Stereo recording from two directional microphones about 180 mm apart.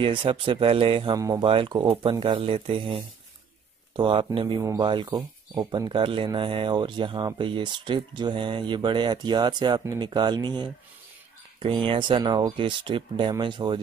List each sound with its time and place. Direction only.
0.0 s speech: 25° right (ahead or behind)
11.6 s speech: 30° right (ahead or behind)